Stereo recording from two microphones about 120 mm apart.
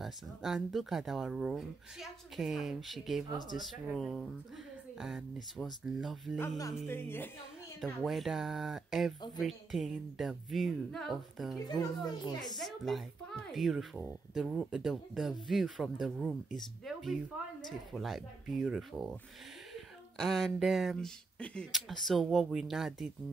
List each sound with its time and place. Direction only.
0.0 s speech: centre (ahead or behind)
6.9 s speech: 20° left (ahead or behind)
7.8 s speech: centre (ahead or behind)
12.1 s a child's voice: 35° left (ahead or behind)
12.5 s speech: centre (ahead or behind)